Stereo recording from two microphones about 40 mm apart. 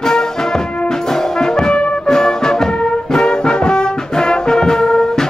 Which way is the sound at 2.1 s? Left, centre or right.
Centre.